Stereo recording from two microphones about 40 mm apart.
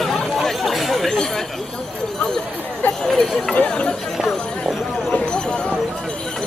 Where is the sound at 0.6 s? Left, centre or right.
Centre.